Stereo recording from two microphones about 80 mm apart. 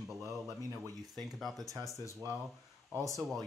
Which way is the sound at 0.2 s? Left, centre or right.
Right.